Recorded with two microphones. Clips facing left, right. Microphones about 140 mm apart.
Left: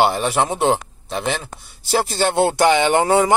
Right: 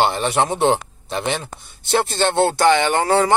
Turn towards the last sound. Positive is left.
turn(degrees=15)  # may be behind; listen again after turning